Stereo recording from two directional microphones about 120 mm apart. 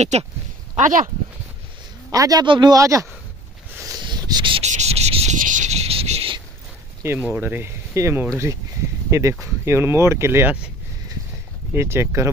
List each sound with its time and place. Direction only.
0.0 s speech: 70° right (ahead or behind)
0.7 s speech: 90° right
2.0 s a man's voice: 30° right (ahead or behind)
2.4 s speech: 40° right (ahead or behind)
3.8 s a sound: 35° right (ahead or behind)
4.6 s a sound: 70° right (ahead or behind)
7.0 s speech: 15° right (ahead or behind)
11.7 s speech: 20° right (ahead or behind)